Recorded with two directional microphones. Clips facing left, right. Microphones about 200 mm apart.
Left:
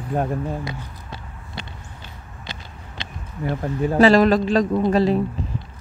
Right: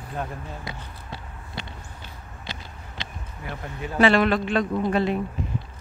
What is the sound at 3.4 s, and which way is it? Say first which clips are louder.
A man's voice: left 11 dB; 35° left (ahead or behind).